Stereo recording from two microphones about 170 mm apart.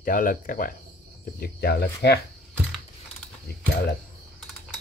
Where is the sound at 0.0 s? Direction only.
55° left (ahead or behind).